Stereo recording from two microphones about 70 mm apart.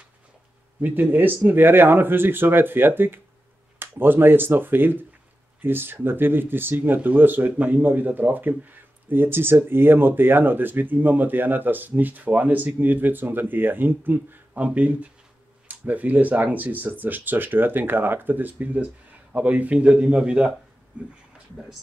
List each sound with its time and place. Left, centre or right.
0.7 s speech: right